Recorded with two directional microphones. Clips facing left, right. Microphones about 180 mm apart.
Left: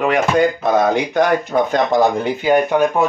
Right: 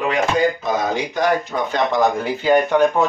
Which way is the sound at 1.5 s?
50° left (ahead or behind).